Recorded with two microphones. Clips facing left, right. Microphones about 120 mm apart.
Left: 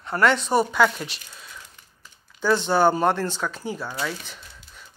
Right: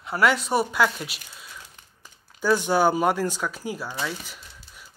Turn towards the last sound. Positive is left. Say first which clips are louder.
# left 1 dB
turn(degrees=-5)  # may be behind; listen again after turning